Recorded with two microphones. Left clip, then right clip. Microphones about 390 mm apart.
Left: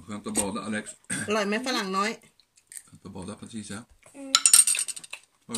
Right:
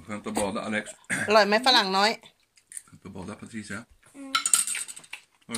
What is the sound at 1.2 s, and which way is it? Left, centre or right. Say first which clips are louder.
Speech: right 8 dB; centre.